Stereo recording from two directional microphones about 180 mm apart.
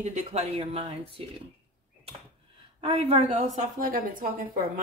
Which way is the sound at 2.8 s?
30° right (ahead or behind).